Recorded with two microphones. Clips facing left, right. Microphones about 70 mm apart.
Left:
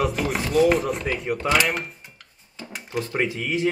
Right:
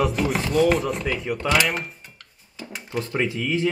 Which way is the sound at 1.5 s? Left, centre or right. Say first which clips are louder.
Even; centre.